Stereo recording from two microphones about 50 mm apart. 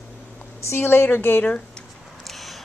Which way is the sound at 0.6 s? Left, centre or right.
Left.